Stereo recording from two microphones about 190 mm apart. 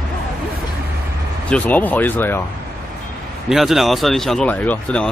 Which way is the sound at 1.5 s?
10° left (ahead or behind).